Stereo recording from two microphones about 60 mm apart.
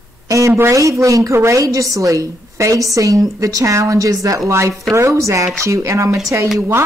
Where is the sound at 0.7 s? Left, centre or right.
Right.